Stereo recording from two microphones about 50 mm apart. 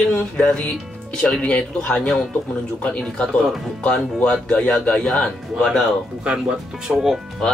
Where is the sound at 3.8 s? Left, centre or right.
Left.